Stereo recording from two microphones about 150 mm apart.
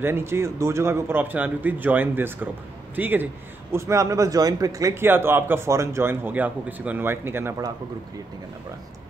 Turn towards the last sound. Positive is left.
turn(degrees=-20)  # may be behind; listen again after turning